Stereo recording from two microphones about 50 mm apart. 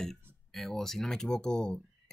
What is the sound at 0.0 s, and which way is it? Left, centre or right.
Speech, centre.